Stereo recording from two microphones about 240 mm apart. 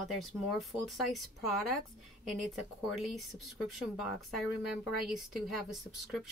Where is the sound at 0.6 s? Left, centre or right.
Centre.